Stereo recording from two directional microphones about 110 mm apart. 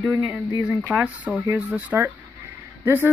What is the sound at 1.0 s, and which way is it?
Speech, 15° right (ahead or behind).